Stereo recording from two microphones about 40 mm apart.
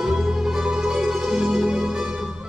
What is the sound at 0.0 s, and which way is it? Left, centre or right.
Music, centre.